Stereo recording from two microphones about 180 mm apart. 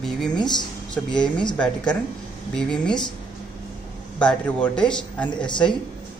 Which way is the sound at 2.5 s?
5° left (ahead or behind).